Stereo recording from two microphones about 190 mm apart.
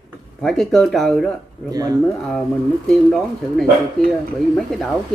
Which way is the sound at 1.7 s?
20° right (ahead or behind).